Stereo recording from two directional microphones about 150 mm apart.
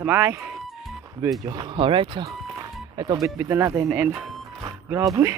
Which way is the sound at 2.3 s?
25° right (ahead or behind).